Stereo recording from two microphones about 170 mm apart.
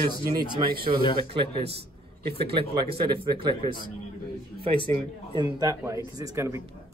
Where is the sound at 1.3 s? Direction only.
35° right (ahead or behind).